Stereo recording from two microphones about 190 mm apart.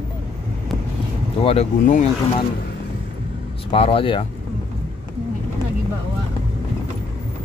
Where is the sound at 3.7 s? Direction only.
30° left (ahead or behind).